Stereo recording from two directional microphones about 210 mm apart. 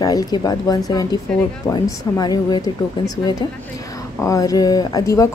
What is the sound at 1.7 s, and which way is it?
Speech, 20° left (ahead or behind).